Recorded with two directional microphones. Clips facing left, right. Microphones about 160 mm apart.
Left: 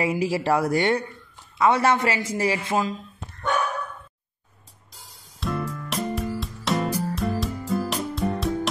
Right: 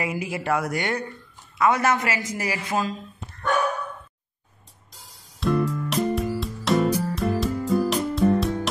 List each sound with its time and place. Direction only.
0.0 s speech: 30° left (ahead or behind)
5.4 s music: centre (ahead or behind)